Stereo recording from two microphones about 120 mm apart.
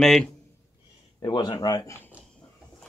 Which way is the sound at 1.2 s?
35° left (ahead or behind).